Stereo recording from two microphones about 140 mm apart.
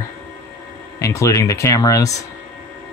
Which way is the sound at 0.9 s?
20° left (ahead or behind).